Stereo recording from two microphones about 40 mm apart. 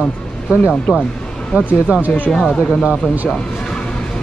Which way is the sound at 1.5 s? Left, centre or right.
Right.